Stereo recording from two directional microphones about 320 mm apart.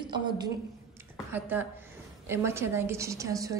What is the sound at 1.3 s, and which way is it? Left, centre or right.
A woman's voice, centre.